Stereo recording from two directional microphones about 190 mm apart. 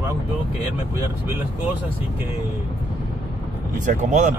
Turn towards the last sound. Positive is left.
turn(degrees=-40)  # may be behind; listen again after turning